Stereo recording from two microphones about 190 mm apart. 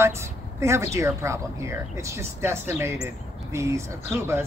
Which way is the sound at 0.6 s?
15° right (ahead or behind).